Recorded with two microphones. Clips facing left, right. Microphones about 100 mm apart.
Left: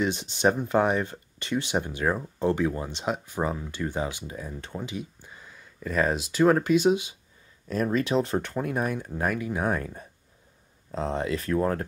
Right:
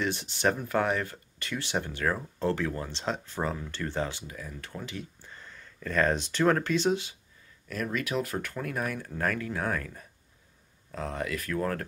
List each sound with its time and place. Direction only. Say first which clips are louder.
0.0 s speech: left 4 dB; 20° left (ahead or behind)
4.3 s speech: left 5 dB; 25° left (ahead or behind)
7.6 s speech: left 7 dB; 30° left (ahead or behind)